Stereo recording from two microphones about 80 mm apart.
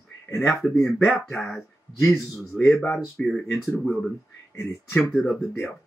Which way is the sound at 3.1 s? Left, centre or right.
Centre.